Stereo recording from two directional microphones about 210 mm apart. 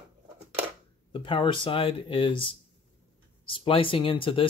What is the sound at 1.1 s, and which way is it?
Speech, 25° left (ahead or behind).